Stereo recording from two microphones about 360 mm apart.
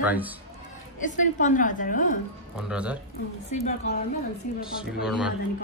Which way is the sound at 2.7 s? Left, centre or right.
Centre.